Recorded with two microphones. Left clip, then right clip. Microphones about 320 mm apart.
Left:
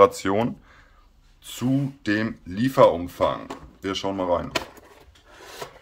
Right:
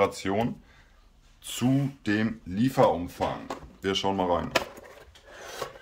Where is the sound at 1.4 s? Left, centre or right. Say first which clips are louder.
Left 2 dB; centre.